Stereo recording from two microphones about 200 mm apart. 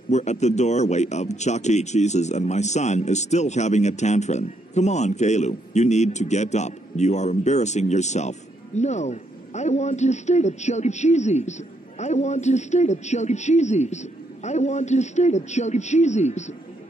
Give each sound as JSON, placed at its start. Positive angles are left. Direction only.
{"t": 0.1, "sound": "speech", "side_deg": 35}